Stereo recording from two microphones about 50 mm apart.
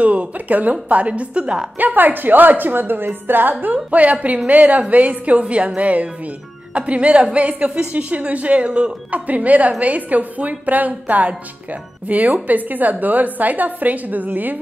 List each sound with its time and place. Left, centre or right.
0.0 s speech: right
1.8 s a woman's voice: right
3.7 s a woman's voice: right